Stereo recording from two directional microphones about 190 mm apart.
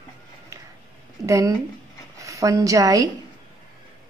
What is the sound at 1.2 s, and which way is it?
A woman's voice, 15° right (ahead or behind).